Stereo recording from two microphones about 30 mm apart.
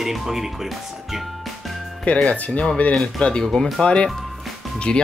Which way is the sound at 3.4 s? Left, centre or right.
Centre.